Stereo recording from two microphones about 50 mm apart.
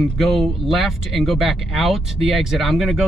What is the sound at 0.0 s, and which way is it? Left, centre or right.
Speech, centre.